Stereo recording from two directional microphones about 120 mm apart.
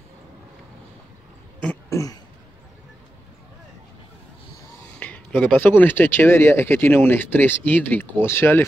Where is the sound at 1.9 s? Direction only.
25° left (ahead or behind).